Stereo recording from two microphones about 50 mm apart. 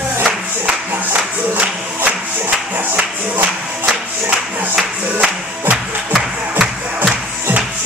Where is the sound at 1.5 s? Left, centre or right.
Right.